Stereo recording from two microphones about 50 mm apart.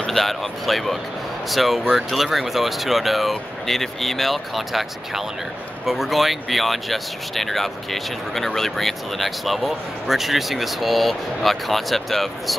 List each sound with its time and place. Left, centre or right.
0.0 s speech: centre